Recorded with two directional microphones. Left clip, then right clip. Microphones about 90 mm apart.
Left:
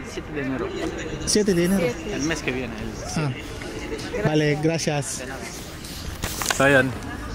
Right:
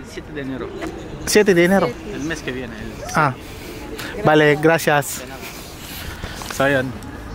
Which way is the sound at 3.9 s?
35° right (ahead or behind).